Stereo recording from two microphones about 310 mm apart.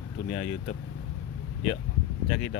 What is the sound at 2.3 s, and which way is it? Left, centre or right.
Speech, left.